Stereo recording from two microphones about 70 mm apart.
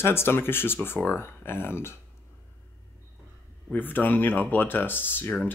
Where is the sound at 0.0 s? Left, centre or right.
Left.